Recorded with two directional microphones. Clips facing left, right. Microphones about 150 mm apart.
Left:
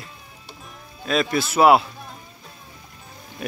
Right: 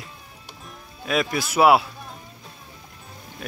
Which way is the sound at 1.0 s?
10° right (ahead or behind).